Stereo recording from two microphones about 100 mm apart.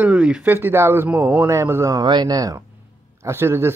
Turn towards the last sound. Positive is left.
turn(degrees=-25)  # may be behind; listen again after turning